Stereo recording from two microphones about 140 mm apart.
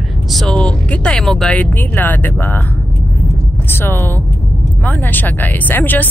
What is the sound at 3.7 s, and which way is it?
Speech, 15° left (ahead or behind).